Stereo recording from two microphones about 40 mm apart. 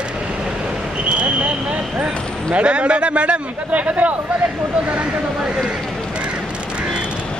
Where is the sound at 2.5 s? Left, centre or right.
Right.